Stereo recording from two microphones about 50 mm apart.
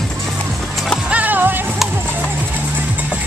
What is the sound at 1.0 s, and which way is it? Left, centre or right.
Music, right.